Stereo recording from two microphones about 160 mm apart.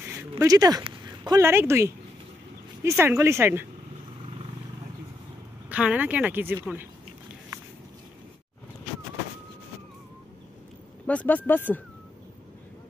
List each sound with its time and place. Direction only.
0.4 s a woman's voice: 20° right (ahead or behind)
5.7 s a woman's voice: 10° right (ahead or behind)
11.1 s speech: 10° left (ahead or behind)